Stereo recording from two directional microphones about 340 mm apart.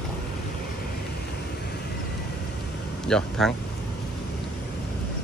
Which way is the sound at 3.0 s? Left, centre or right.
Centre.